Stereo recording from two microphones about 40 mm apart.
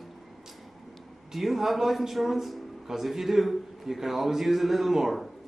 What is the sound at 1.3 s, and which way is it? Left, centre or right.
A man's voice, centre.